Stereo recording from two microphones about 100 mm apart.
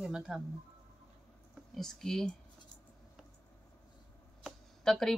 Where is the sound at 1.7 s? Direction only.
5° left (ahead or behind).